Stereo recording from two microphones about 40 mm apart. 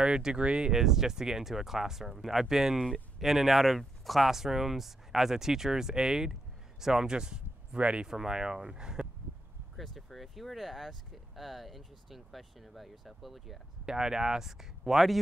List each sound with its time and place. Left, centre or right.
0.0 s speech: right
0.7 s speech: centre; by 8.1 s right
8.1 s speech: centre
9.8 s speech: centre
13.8 s speech: centre